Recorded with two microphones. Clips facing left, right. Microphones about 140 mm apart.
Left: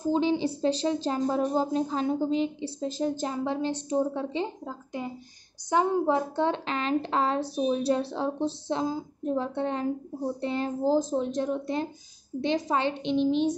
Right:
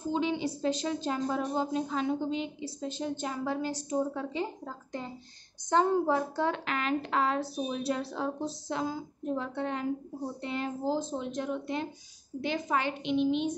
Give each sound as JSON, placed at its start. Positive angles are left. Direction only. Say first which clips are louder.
{"t": 0.0, "sound": "a woman's voice", "louder": "left 5 dB", "side_deg": 35}
{"t": 5.0, "sound": "a woman's voice", "louder": "left 7 dB", "side_deg": 15}